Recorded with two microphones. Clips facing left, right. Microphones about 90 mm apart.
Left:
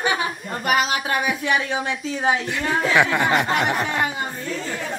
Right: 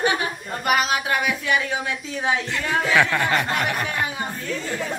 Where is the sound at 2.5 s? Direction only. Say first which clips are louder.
Right 1 dB; 15° left (ahead or behind).